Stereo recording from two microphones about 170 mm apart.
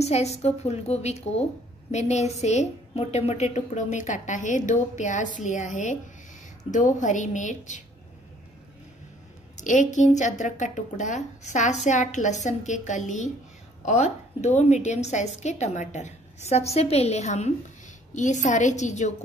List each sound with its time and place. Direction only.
0.0 s a woman's voice: 40° left (ahead or behind)
9.6 s a woman's voice: 45° left (ahead or behind)